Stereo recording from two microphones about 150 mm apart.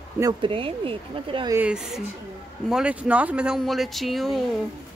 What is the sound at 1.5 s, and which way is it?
Speech, 10° right (ahead or behind).